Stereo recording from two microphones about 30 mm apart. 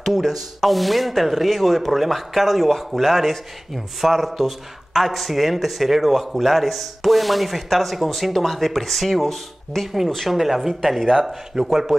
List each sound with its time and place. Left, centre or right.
0.0 s a man's voice: centre
10.3 s speech: centre